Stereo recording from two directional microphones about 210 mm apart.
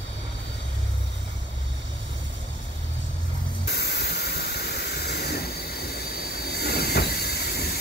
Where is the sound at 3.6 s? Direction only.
50° left (ahead or behind).